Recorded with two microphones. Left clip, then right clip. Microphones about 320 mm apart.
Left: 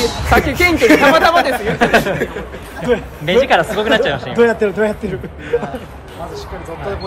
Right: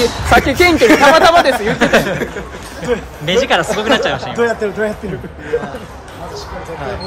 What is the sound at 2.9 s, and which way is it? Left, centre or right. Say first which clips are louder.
Speech: left 2 dB; left.